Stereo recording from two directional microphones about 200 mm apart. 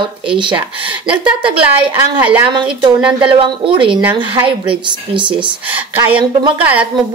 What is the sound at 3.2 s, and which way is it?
Speech, 25° right (ahead or behind).